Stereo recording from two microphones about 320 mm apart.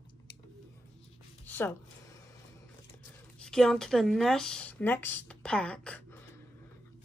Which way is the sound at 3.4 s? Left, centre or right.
Centre.